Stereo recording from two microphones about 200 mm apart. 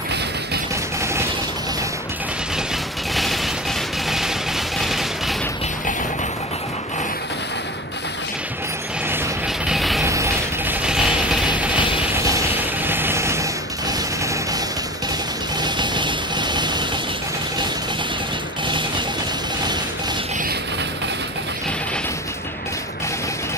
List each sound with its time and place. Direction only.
4.7 s vehicle: centre (ahead or behind)
9.7 s music: centre (ahead or behind)
10.0 s music: 15° right (ahead or behind)
12.3 s a sound: 10° right (ahead or behind)
15.6 s vehicle: 20° right (ahead or behind)
18.7 s music: 25° right (ahead or behind)